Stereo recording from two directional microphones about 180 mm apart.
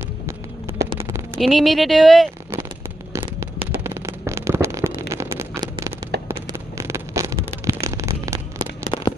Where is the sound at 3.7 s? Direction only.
15° right (ahead or behind).